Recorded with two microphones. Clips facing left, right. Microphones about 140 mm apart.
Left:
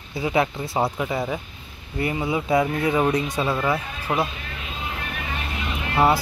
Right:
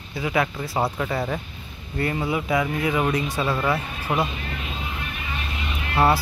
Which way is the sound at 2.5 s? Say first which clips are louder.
Left 5 dB; 25° left (ahead or behind).